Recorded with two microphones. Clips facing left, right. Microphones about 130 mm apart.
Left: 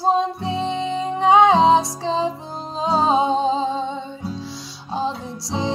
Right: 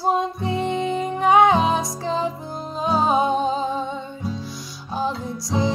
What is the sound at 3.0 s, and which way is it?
Music, 25° left (ahead or behind).